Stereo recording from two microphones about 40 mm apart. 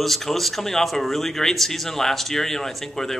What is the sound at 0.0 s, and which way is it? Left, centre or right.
A man's voice, centre.